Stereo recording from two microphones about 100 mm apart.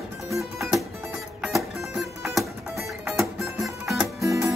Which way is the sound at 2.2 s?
Centre (ahead or behind).